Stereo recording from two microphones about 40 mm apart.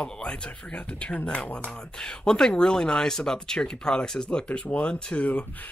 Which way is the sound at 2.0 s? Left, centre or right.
Centre.